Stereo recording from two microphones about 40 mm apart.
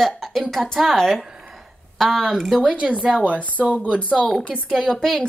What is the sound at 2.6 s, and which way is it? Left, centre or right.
Speech, right.